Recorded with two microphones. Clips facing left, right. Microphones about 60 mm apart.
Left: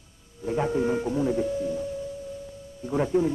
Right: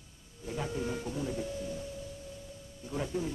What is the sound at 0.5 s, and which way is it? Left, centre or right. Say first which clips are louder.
Speech: left 11 dB; left.